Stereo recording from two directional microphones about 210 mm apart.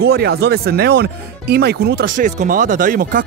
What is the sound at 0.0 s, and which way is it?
Speech, 50° right (ahead or behind).